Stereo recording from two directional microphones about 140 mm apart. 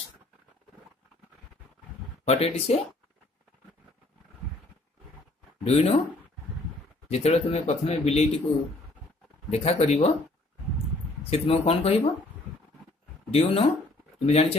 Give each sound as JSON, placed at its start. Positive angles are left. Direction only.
{"t": 2.2, "sound": "speech", "side_deg": 45}
{"t": 5.7, "sound": "speech", "side_deg": 45}
{"t": 7.1, "sound": "speech", "side_deg": 50}
{"t": 9.5, "sound": "speech", "side_deg": 45}
{"t": 11.2, "sound": "speech", "side_deg": 45}
{"t": 13.3, "sound": "speech", "side_deg": 45}